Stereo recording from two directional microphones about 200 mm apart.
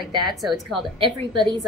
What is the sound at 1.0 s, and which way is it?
Speech, 20° right (ahead or behind).